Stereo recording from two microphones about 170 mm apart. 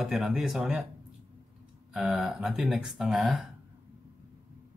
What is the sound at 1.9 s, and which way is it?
Speech, 5° right (ahead or behind).